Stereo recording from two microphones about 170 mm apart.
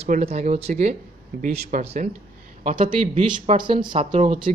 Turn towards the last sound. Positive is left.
turn(degrees=-30)  # may be behind; listen again after turning